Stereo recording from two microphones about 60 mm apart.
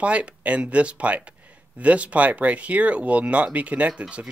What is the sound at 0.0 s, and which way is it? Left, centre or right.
Speech, right.